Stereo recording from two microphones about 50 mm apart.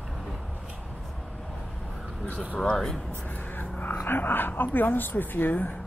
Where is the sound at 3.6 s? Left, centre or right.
Left.